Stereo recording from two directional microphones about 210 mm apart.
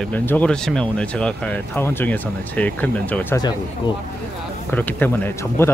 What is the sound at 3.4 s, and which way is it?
Speech, 20° left (ahead or behind).